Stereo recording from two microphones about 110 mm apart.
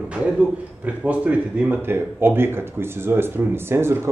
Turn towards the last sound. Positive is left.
turn(degrees=-20)  # may be behind; listen again after turning